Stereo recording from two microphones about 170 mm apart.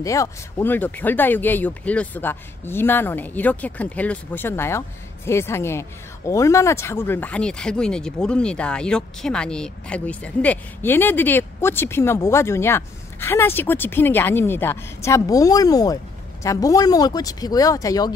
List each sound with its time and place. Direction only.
0.0 s speech: 20° left (ahead or behind)